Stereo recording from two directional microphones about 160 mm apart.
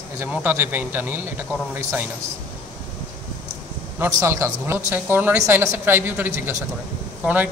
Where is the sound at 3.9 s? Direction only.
20° right (ahead or behind).